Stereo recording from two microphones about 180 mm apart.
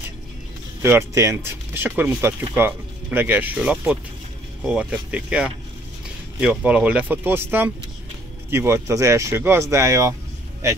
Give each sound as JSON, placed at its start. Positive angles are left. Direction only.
{"t": 0.8, "sound": "speech", "side_deg": -15}